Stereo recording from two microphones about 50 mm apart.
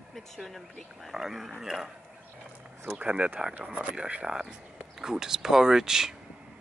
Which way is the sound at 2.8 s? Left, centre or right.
Right.